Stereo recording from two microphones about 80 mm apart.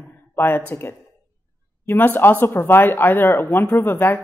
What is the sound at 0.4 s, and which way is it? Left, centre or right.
Speech, left.